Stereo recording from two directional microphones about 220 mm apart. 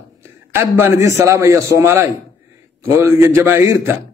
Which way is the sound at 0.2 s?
10° right (ahead or behind).